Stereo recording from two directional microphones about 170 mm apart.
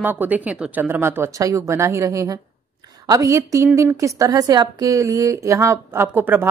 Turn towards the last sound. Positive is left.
turn(degrees=-10)  # may be behind; listen again after turning